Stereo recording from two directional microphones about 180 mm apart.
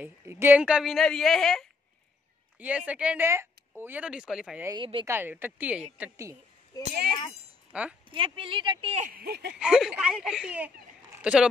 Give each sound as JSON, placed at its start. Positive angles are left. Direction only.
{"t": 0.0, "sound": "a woman's voice", "side_deg": -15}
{"t": 4.6, "sound": "speech", "side_deg": -25}
{"t": 5.0, "sound": "speech", "side_deg": -10}
{"t": 7.7, "sound": "speech", "side_deg": -5}
{"t": 8.1, "sound": "speech", "side_deg": -30}
{"t": 9.1, "sound": "speech", "side_deg": -60}
{"t": 9.6, "sound": "speech", "side_deg": -5}